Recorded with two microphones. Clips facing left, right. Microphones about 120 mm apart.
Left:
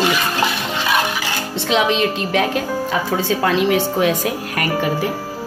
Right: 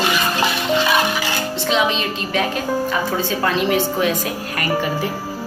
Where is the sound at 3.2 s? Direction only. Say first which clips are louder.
Left 2 dB; 85° left.